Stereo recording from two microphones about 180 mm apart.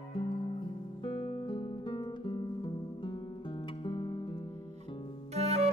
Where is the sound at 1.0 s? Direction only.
35° left (ahead or behind).